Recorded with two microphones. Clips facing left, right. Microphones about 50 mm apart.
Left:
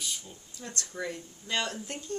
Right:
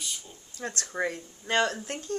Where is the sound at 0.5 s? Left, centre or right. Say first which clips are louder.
Right 6 dB; right.